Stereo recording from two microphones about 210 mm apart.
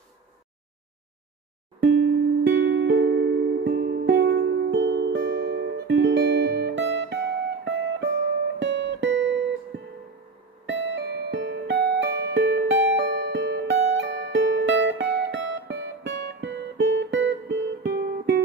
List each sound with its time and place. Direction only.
2.4 s music: 60° right (ahead or behind)